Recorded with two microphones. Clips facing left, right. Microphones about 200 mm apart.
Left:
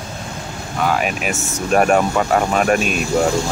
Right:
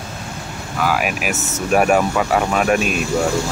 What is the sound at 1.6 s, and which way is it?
Speech, 5° right (ahead or behind).